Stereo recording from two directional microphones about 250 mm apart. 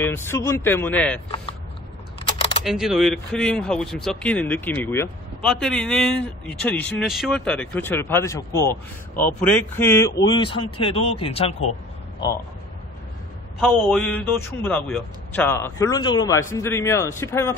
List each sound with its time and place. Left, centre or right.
0.0 s a man's voice: centre
2.6 s a man's voice: centre; by 11.5 s left
13.6 s a man's voice: centre